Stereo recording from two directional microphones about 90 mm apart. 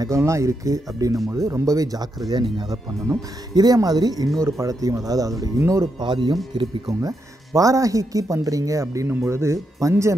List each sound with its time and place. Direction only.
0.0 s speech: 35° right (ahead or behind)
4.4 s speech: 35° right (ahead or behind)
5.9 s speech: 55° right (ahead or behind)
6.9 s speech: 40° right (ahead or behind)